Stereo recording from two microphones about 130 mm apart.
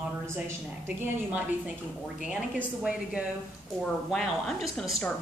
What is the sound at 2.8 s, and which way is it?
A woman's voice, 5° right (ahead or behind).